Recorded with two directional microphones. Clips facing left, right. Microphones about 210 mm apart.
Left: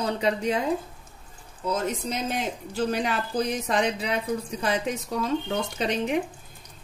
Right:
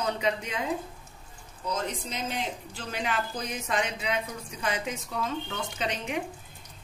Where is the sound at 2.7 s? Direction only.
40° left (ahead or behind).